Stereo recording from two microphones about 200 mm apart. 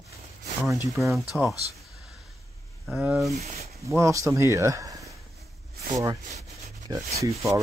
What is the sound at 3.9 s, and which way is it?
Speech, 15° right (ahead or behind).